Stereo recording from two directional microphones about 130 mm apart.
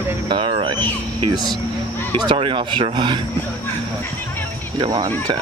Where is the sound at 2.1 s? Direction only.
40° right (ahead or behind).